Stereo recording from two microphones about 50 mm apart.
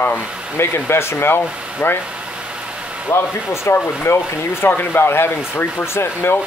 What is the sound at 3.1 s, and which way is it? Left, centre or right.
Speech, left.